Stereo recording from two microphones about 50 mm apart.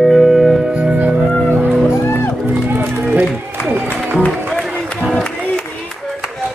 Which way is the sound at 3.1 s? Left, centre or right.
Right.